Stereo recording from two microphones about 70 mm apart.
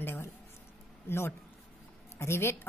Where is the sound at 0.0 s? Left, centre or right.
Left.